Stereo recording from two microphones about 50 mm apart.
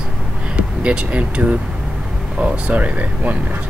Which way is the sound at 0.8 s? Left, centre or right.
Right.